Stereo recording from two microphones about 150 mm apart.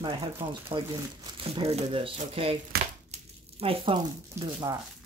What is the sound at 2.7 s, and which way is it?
Crumpling, 90° right.